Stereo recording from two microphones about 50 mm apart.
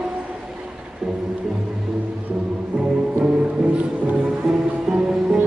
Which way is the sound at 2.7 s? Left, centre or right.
Right.